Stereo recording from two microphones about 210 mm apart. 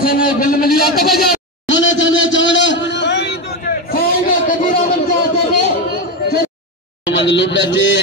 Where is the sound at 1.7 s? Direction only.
60° left (ahead or behind); by 4.9 s 45° left (ahead or behind).